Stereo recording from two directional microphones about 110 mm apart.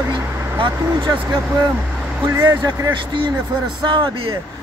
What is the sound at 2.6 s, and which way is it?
Speech, 40° right (ahead or behind).